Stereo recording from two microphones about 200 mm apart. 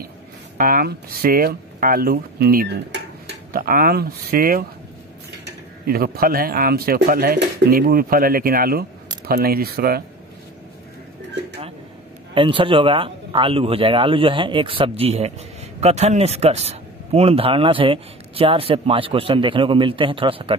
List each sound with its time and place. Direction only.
0.6 s speech: 45° right (ahead or behind)
12.4 s speech: 25° right (ahead or behind)